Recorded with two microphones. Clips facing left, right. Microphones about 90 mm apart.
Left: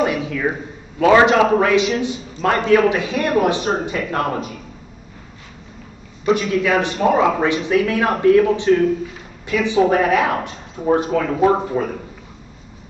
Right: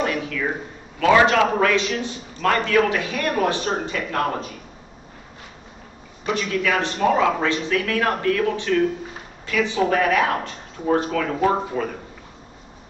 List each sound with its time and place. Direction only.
0.0 s a sound: 15° left (ahead or behind)
1.1 s a man's voice: 20° left (ahead or behind)
6.2 s a man's voice: 20° left (ahead or behind)